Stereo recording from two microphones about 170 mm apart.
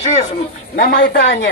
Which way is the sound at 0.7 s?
60° left (ahead or behind).